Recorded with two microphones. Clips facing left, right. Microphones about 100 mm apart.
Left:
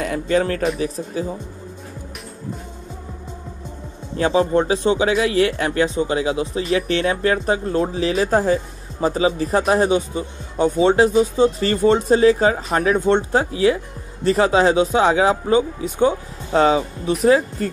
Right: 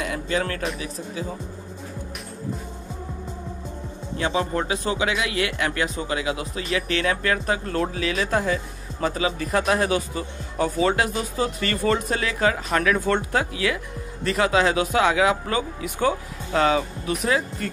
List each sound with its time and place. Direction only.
0.0 s speech: 40° left (ahead or behind)
4.2 s speech: 35° left (ahead or behind)
8.0 s speech: 35° left (ahead or behind)
15.4 s speech: 20° left (ahead or behind)